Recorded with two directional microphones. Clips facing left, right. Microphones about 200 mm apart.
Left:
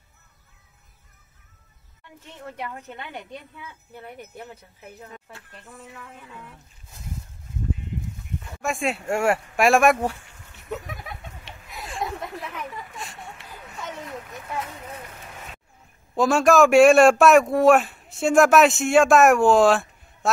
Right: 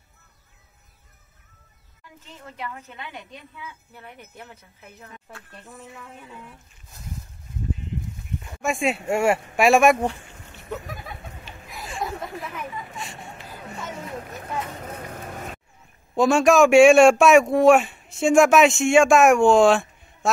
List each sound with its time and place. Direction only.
8.5 s a man's voice: centre (ahead or behind)
11.7 s a sound: centre (ahead or behind)
15.0 s vehicle: 45° right (ahead or behind)
16.2 s a man's voice: centre (ahead or behind)